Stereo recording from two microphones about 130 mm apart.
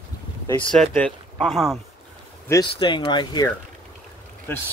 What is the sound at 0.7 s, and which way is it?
Speech, 10° left (ahead or behind).